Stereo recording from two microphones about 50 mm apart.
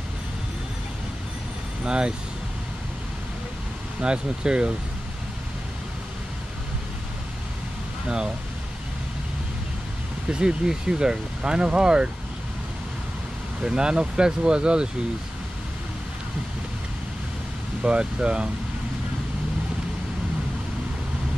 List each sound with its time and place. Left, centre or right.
1.9 s speech: centre
4.0 s speech: centre
10.3 s speech: centre
13.6 s speech: centre
17.8 s speech: centre